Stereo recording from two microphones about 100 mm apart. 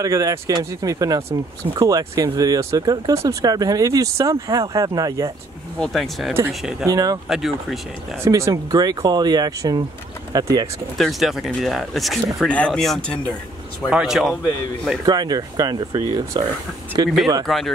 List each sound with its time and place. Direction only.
0.0 s speech: 35° right (ahead or behind)
5.8 s speech: centre (ahead or behind)
6.9 s speech: 35° right (ahead or behind)
7.2 s speech: 5° right (ahead or behind)
8.2 s speech: 30° right (ahead or behind)
8.7 s speech: 45° right (ahead or behind)
11.0 s speech: centre (ahead or behind)
12.4 s speech: 15° left (ahead or behind); by 14.3 s 5° right (ahead or behind)
15.0 s speech: 40° right (ahead or behind)
17.5 s speech: centre (ahead or behind)